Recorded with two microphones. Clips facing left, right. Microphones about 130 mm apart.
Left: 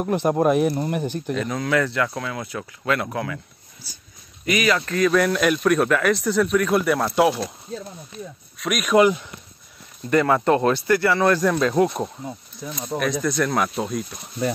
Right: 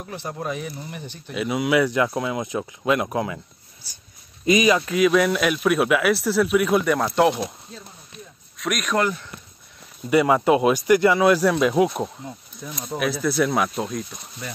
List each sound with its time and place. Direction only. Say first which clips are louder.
0.0 s speech: left 11 dB; 60° left (ahead or behind)
1.3 s speech: right 3 dB; 10° right (ahead or behind)
4.5 s speech: right 3 dB; 20° right (ahead or behind); by 7.1 s centre (ahead or behind)
8.5 s speech: left 1 dB; centre (ahead or behind)
8.9 s speech: left 8 dB; 15° left (ahead or behind)
10.0 s speech: right 1 dB; 10° right (ahead or behind)